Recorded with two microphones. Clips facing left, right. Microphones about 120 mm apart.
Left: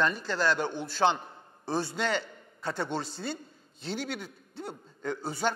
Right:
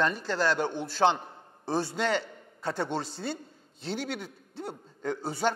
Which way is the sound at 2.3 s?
40° right (ahead or behind).